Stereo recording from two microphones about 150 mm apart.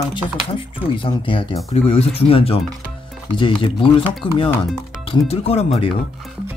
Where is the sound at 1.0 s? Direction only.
35° left (ahead or behind).